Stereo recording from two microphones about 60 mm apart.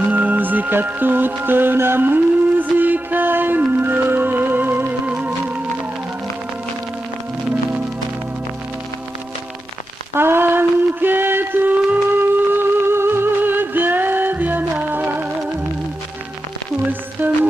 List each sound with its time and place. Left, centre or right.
0.1 s music: right
10.1 s a sound: right
17.2 s music: right